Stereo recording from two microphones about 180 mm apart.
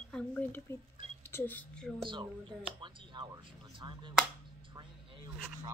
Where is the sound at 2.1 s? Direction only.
25° right (ahead or behind).